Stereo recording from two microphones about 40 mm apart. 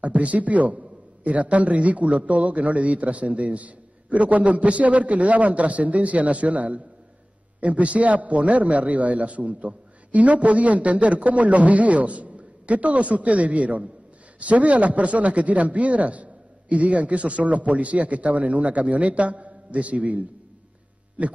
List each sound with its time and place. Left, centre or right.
0.0 s a man's voice: right